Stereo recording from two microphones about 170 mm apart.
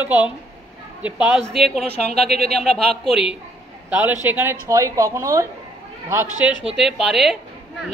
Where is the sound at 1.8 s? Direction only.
70° right (ahead or behind).